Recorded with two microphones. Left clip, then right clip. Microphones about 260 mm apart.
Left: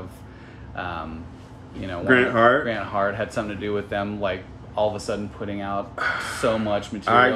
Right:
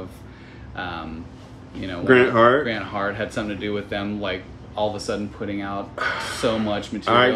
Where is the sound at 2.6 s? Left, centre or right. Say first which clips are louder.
Left 1 dB; centre.